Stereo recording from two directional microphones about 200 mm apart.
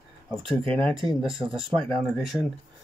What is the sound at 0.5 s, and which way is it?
Speech, 25° right (ahead or behind).